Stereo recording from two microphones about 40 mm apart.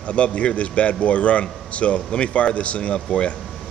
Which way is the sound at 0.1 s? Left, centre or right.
Left.